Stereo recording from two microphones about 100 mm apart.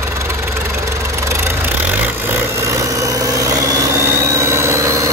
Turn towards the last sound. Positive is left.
turn(degrees=-30)  # may be behind; listen again after turning